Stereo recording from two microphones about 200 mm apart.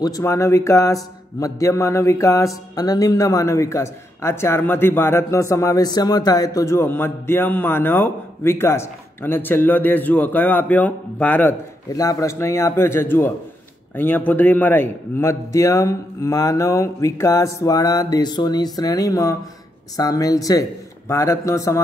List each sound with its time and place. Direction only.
0.0 s music: 15° left (ahead or behind)